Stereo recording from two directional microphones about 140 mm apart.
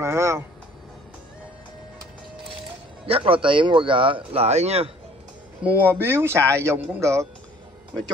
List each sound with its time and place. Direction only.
0.0 s a sound: 20° right (ahead or behind)
3.1 s speech: 40° right (ahead or behind)
5.6 s speech: 10° right (ahead or behind)